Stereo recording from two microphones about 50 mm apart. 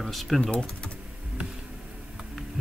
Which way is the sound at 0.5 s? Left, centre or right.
Left.